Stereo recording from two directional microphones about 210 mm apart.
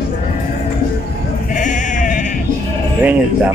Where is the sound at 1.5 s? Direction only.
35° left (ahead or behind).